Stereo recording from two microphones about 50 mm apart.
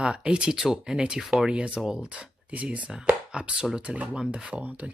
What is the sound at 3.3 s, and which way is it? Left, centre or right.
Speech, centre.